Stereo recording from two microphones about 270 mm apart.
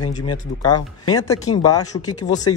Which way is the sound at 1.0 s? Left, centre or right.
Left.